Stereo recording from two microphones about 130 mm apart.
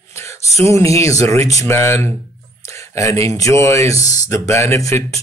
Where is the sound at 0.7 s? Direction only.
25° left (ahead or behind).